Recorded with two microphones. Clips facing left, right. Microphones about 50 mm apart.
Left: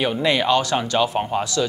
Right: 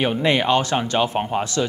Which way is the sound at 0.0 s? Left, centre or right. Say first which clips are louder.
Right 1 dB; right.